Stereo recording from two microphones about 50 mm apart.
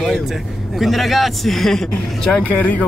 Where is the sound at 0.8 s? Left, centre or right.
Centre.